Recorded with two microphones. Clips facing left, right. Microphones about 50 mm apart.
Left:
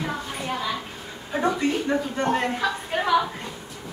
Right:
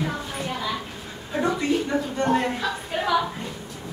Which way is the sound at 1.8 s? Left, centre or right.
Centre.